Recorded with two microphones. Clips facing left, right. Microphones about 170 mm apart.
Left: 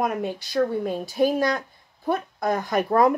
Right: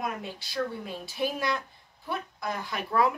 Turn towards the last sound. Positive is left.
turn(degrees=45)  # may be behind; listen again after turning